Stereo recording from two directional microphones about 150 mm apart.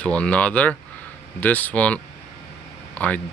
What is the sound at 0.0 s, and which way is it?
Speech, 10° left (ahead or behind).